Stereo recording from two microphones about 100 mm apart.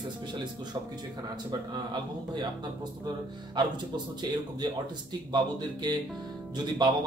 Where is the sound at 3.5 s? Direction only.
50° right (ahead or behind).